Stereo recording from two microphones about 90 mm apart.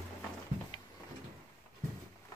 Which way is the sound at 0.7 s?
55° left (ahead or behind).